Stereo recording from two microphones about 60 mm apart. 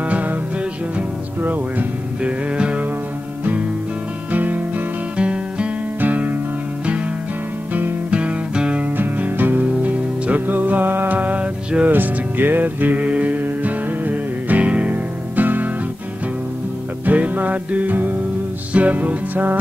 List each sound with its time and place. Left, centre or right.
0.0 s music: right
1.4 s music: right
2.5 s music: centre
4.3 s music: right
5.9 s music: right
8.1 s music: right
8.8 s music: right
17.0 s music: right